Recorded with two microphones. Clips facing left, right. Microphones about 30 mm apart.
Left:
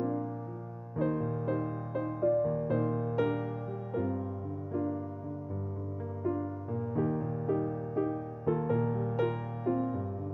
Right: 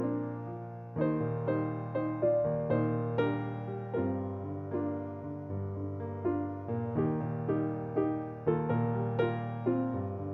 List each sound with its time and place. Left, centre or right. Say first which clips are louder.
0.0 s music: even; right
6.2 s music: right 1 dB; right